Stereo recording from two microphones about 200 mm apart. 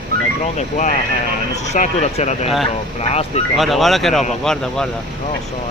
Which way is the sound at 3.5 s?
Centre (ahead or behind).